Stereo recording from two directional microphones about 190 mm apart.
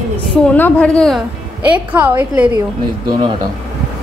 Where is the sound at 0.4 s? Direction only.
10° left (ahead or behind).